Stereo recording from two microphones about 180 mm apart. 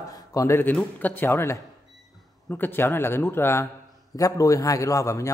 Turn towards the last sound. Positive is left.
turn(degrees=15)  # may be behind; listen again after turning